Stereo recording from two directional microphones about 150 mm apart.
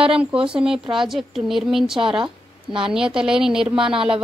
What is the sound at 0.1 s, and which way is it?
A woman's voice, 5° right (ahead or behind).